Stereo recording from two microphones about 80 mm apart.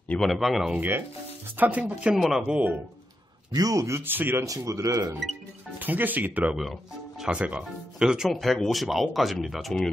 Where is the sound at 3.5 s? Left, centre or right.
Right.